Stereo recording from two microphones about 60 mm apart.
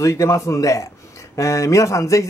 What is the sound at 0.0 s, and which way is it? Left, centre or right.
Speech, left.